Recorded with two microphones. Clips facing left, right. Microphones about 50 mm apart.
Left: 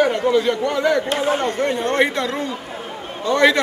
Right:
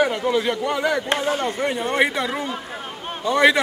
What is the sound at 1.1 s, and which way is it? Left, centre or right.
Speech, centre.